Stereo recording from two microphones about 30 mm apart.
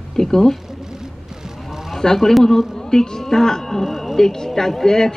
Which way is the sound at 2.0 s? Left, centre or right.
Centre.